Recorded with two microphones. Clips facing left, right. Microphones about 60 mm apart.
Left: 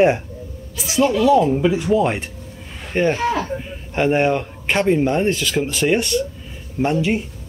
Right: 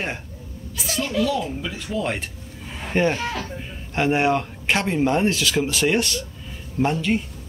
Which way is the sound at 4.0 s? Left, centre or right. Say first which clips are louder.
Left 3 dB; centre.